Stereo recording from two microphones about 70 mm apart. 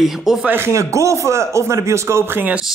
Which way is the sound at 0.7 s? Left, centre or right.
Right.